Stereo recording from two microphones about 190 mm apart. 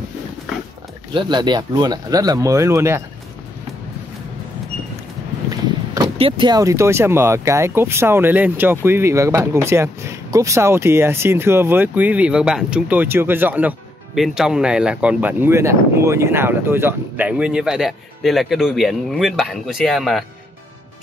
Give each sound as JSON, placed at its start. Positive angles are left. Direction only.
{"t": 1.1, "sound": "speech", "side_deg": -25}
{"t": 5.5, "sound": "speech", "side_deg": -25}